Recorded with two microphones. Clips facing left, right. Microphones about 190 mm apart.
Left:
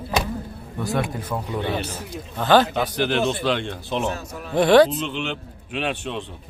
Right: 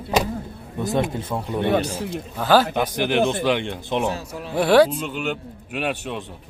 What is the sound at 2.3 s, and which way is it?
A man's voice, 5° right (ahead or behind).